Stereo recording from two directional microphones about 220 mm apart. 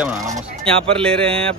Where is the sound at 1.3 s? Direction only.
25° right (ahead or behind).